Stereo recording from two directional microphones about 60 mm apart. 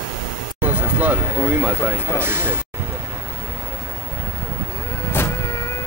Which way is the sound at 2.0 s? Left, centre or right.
Right.